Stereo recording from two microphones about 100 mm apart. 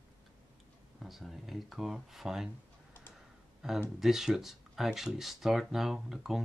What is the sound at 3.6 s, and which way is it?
Speech, 5° right (ahead or behind).